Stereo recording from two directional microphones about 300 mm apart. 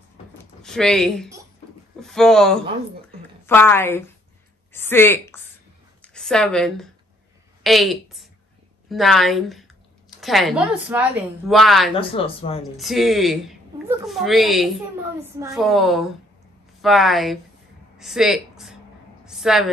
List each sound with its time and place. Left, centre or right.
0.6 s a woman's voice: centre
11.9 s a woman's voice: centre
12.7 s a woman's voice: centre
19.2 s a sound: centre